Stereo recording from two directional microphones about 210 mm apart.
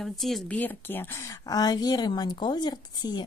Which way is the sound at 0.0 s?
Centre (ahead or behind).